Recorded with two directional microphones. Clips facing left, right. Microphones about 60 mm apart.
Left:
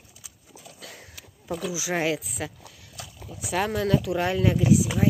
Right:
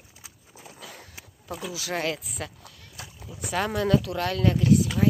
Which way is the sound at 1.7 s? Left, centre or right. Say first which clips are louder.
Left 2 dB; centre.